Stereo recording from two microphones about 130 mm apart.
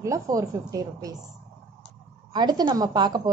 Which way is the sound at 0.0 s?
25° right (ahead or behind).